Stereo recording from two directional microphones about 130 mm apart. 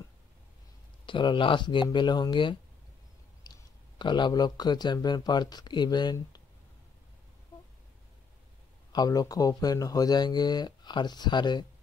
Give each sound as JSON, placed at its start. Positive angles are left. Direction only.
{"t": 1.0, "sound": "speech", "side_deg": 40}
{"t": 3.4, "sound": "a sound", "side_deg": 30}
{"t": 4.0, "sound": "speech", "side_deg": 35}
{"t": 8.9, "sound": "speech", "side_deg": 30}